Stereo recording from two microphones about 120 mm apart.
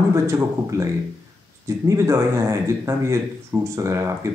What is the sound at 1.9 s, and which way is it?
Speech, 25° right (ahead or behind).